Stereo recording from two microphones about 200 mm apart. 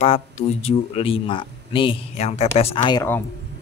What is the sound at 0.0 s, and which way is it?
Speech, 30° left (ahead or behind).